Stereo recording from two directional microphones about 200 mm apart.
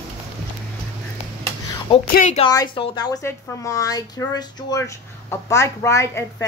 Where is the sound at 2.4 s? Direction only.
20° left (ahead or behind).